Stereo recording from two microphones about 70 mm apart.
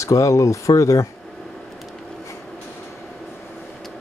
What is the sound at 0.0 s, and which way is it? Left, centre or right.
Speech, left.